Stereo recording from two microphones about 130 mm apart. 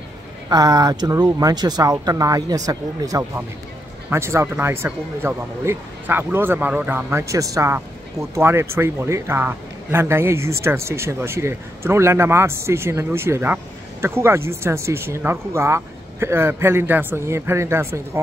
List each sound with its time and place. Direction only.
0.5 s speech: 30° right (ahead or behind)